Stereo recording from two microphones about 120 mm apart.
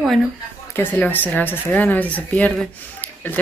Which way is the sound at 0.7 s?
15° left (ahead or behind).